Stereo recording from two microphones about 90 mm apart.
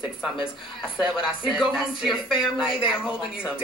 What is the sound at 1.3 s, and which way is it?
Speech, 5° right (ahead or behind).